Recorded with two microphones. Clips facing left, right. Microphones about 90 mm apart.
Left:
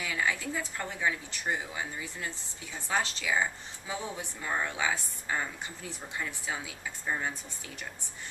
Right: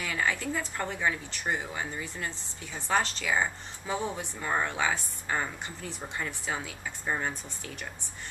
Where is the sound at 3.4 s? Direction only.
40° right (ahead or behind).